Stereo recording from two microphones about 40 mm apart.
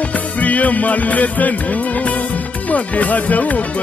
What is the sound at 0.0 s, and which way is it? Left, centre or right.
Music, left.